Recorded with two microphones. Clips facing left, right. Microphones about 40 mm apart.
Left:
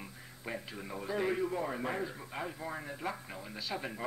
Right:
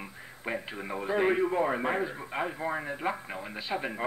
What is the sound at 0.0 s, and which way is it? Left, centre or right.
A man's voice, right.